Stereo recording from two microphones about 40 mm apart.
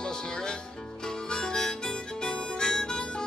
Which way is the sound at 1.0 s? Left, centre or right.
Centre.